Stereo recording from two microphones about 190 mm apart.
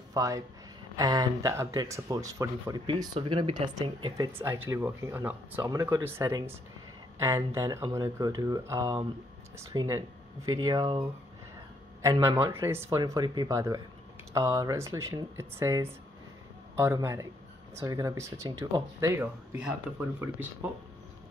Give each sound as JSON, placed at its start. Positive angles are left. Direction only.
{"t": 0.1, "sound": "speech", "side_deg": -20}
{"t": 4.3, "sound": "speech", "side_deg": -10}